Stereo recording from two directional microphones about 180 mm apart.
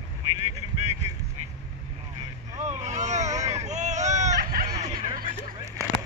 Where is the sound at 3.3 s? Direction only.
40° right (ahead or behind).